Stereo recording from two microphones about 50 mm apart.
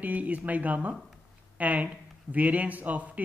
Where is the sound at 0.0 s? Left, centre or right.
Right.